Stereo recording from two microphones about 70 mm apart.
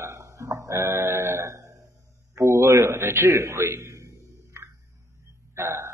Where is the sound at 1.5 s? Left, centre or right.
Right.